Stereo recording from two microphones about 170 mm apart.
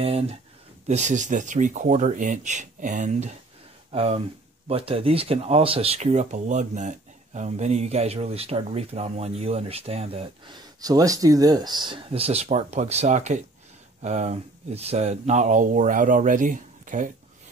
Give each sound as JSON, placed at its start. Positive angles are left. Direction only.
{"t": 0.0, "sound": "speech", "side_deg": -35}